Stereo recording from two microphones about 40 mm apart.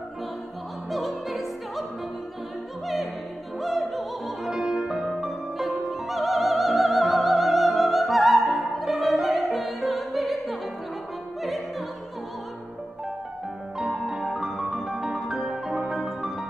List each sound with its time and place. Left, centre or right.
0.8 s opera: centre
3.5 s opera: centre
4.5 s music: centre
5.0 s music: centre
13.9 s music: centre